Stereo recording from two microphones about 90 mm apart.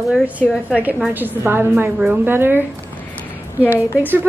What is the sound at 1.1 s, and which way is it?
A woman's voice, 20° right (ahead or behind).